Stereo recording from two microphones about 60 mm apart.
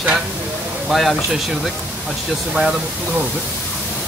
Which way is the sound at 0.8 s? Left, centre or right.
Centre.